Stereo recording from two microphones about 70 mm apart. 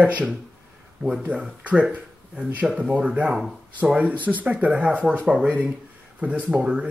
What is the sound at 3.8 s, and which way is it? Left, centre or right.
Speech, centre.